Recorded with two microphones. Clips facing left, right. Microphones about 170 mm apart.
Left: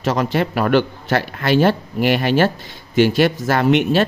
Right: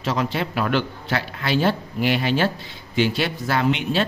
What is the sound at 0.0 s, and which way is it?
A man's voice, 50° left (ahead or behind).